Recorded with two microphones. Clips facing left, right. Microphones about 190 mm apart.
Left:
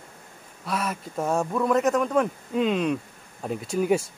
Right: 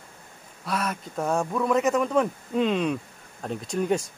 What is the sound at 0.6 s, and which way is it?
Speech, centre (ahead or behind).